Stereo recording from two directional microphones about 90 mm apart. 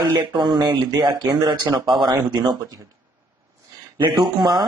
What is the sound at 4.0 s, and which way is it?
Speech, 50° right (ahead or behind).